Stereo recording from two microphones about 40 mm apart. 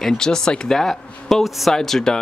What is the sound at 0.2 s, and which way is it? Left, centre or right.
Speech, centre.